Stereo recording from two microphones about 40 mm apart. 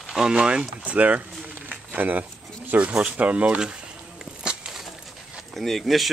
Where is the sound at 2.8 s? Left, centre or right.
Right.